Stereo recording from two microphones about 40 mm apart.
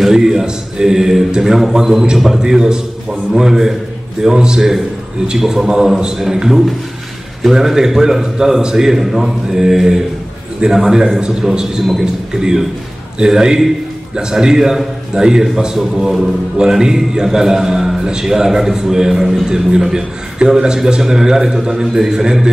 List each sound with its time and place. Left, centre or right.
0.1 s a man's voice: centre